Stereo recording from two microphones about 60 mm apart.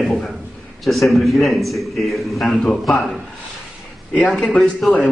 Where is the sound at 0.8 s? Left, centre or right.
Centre.